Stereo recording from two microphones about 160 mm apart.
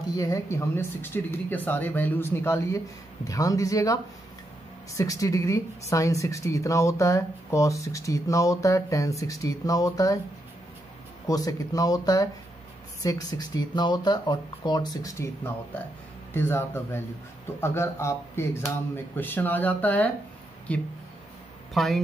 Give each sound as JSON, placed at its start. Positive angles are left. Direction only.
{"t": 0.1, "sound": "speech", "side_deg": 20}
{"t": 11.2, "sound": "speech", "side_deg": 20}